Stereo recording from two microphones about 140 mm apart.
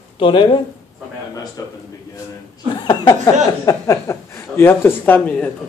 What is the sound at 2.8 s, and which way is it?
Speech, 30° left (ahead or behind).